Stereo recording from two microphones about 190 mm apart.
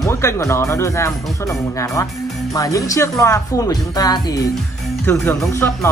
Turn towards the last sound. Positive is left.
turn(degrees=10)  # may be behind; listen again after turning